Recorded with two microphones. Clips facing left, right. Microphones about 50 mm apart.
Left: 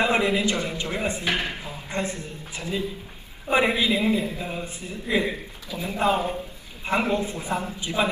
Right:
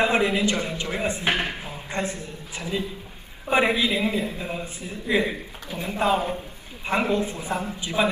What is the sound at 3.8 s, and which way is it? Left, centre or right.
Speech, right.